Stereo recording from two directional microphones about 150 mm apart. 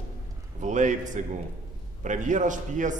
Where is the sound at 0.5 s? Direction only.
55° right (ahead or behind).